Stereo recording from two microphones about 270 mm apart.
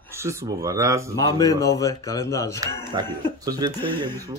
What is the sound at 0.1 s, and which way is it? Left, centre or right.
Speech, centre.